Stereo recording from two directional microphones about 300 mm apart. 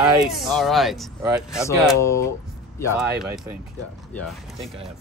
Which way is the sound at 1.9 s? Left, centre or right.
Centre.